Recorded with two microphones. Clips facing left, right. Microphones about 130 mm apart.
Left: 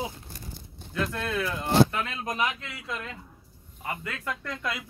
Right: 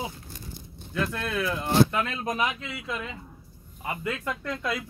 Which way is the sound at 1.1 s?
5° right (ahead or behind).